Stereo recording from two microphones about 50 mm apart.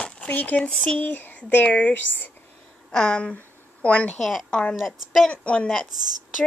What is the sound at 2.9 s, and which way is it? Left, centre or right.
Speech, centre.